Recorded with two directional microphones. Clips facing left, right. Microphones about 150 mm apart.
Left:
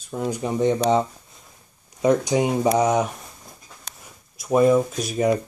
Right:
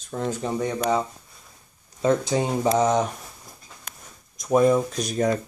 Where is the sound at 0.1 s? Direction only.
15° left (ahead or behind).